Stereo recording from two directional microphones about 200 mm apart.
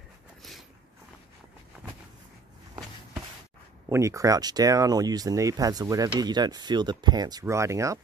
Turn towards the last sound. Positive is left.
turn(degrees=-15)  # may be behind; listen again after turning